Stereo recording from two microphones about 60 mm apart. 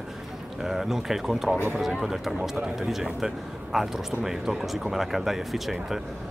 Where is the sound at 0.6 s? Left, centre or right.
Centre.